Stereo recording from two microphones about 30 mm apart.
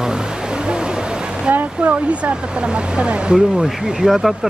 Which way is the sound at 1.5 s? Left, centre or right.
Right.